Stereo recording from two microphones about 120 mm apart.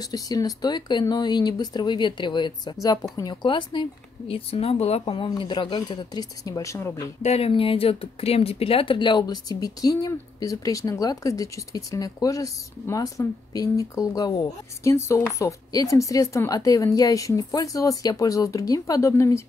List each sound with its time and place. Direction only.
0.0 s speech: 30° left (ahead or behind)
3.4 s speech: 40° left (ahead or behind)
4.3 s speech: 55° left (ahead or behind)
5.1 s speech: 40° left (ahead or behind)
5.8 s a woman's voice: 30° left (ahead or behind)
7.2 s a woman's voice: 60° left (ahead or behind); by 19.4 s 25° left (ahead or behind)